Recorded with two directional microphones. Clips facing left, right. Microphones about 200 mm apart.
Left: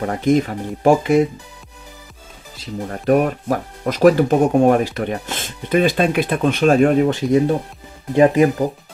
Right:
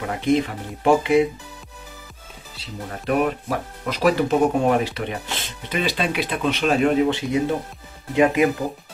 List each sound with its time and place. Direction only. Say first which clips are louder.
0.0 s speech: left 4 dB; 40° left (ahead or behind)
2.5 s speech: left 6 dB; 45° left (ahead or behind)